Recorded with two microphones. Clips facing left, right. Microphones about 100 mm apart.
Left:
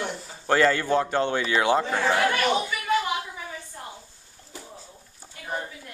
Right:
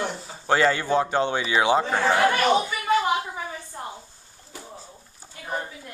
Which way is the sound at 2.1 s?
30° right (ahead or behind).